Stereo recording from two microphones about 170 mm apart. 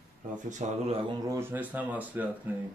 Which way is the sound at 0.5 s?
45° right (ahead or behind).